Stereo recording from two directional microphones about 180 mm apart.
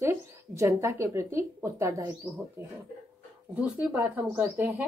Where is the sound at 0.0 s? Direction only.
15° right (ahead or behind).